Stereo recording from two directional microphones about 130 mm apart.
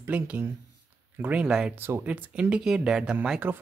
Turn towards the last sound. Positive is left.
turn(degrees=-15)  # may be behind; listen again after turning